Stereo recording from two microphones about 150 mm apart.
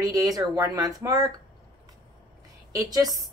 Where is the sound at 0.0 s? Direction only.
25° right (ahead or behind).